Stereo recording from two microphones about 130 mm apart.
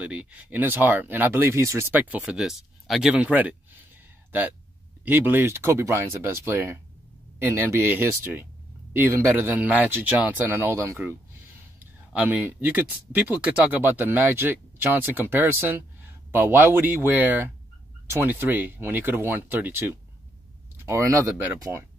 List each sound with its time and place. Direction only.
0.0 s speech: 10° right (ahead or behind)
5.0 s speech: 15° right (ahead or behind)